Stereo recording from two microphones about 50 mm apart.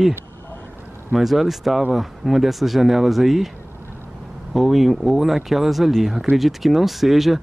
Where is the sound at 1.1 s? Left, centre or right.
Centre.